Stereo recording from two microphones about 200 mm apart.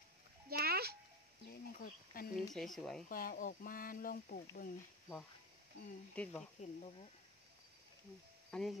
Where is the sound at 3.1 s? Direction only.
45° left (ahead or behind).